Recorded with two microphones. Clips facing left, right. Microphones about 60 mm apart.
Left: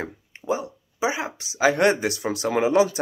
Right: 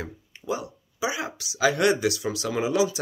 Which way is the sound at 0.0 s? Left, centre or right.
Left.